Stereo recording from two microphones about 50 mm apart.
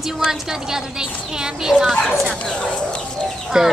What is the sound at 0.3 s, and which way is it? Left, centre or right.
Speech, centre.